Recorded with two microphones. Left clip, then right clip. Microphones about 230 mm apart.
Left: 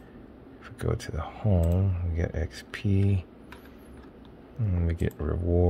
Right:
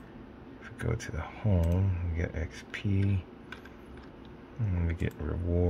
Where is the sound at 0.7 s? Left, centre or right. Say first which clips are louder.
Left 4 dB; centre.